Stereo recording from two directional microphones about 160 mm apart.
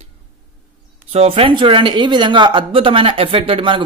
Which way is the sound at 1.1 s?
40° right (ahead or behind).